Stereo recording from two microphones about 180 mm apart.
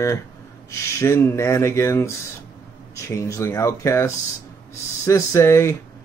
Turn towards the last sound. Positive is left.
turn(degrees=15)  # may be behind; listen again after turning